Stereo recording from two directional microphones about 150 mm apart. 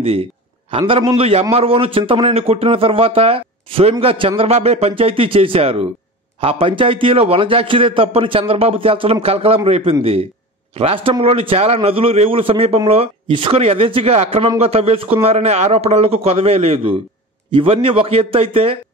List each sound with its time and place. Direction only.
0.0 s a man's voice: 40° right (ahead or behind)